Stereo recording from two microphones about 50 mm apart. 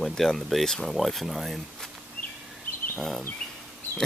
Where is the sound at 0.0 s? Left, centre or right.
Centre.